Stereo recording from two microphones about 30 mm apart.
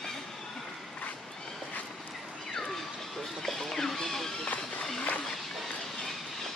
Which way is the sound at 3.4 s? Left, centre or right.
Centre.